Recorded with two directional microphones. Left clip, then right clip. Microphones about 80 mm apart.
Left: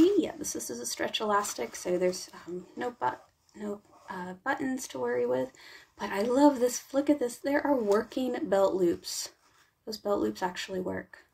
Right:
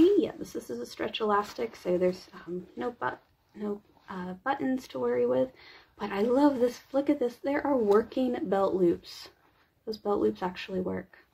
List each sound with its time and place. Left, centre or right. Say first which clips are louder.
0.0 s speech: right 1 dB; right